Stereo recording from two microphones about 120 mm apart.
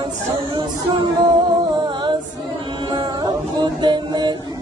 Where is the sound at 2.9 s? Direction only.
40° right (ahead or behind).